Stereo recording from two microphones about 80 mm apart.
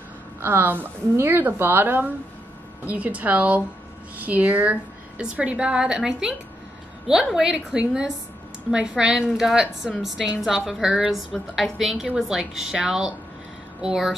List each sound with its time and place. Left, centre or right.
0.4 s a woman's voice: right; by 11.1 s centre
11.1 s a woman's voice: centre